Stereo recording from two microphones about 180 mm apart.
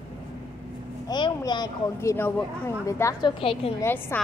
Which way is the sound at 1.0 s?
25° left (ahead or behind).